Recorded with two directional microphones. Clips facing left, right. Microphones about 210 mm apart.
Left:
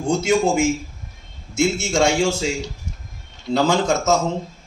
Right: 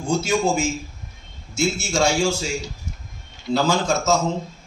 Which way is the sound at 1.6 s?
20° left (ahead or behind).